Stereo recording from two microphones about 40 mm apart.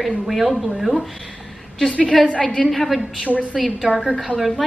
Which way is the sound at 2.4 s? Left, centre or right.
Left.